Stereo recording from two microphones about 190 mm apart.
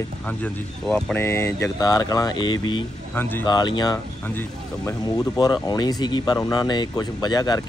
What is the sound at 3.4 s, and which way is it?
Speech, 20° left (ahead or behind).